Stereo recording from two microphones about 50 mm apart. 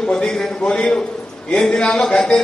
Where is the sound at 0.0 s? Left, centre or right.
Centre.